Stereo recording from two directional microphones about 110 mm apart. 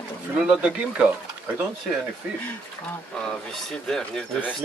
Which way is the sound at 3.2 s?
5° left (ahead or behind).